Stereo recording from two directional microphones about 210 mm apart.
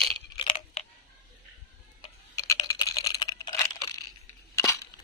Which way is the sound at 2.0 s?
15° left (ahead or behind).